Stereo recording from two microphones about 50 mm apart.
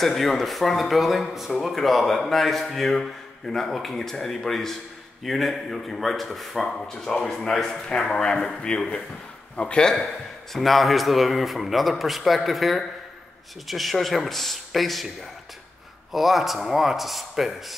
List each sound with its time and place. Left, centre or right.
0.0 s a man's voice: centre
10.5 s speech: centre
16.1 s speech: centre